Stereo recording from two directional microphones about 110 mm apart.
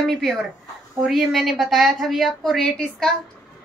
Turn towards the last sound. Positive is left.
turn(degrees=5)  # may be behind; listen again after turning